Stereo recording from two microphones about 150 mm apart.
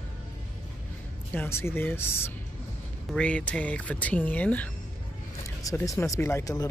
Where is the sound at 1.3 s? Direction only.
15° left (ahead or behind).